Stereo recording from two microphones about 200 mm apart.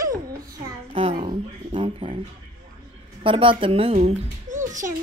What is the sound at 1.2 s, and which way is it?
Music, 25° right (ahead or behind).